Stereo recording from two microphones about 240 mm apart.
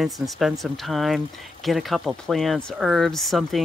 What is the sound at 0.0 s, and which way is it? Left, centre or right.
Speech, centre.